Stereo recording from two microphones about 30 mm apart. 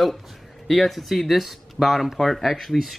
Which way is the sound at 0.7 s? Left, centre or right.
Centre.